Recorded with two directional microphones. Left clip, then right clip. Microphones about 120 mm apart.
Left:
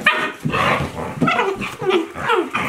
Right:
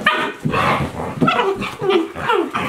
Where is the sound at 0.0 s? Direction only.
5° right (ahead or behind).